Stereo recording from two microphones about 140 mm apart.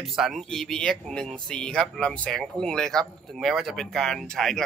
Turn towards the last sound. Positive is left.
turn(degrees=5)  # may be behind; listen again after turning